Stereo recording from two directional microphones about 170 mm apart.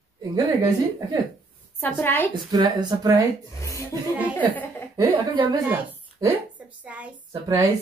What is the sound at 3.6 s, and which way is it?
Speech, 20° left (ahead or behind).